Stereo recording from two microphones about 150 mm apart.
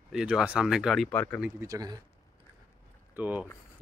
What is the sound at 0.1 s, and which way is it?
Speech, 5° right (ahead or behind).